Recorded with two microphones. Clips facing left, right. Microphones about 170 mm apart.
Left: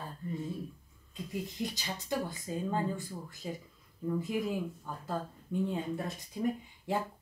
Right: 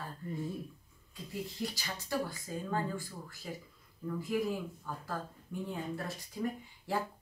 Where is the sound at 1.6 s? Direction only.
20° left (ahead or behind).